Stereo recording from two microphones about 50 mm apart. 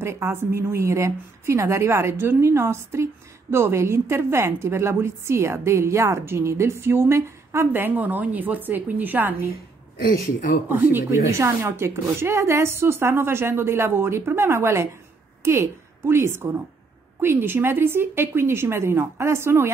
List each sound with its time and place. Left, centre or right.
0.0 s a woman's voice: right
7.7 s a woman's voice: right
10.7 s speech: right
11.1 s a woman's voice: right